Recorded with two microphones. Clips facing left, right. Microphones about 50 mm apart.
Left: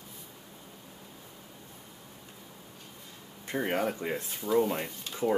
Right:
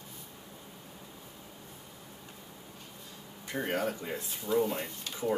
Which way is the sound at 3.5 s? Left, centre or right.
Left.